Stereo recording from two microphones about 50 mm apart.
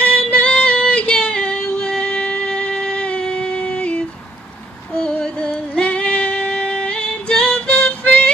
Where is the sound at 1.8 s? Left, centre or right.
Centre.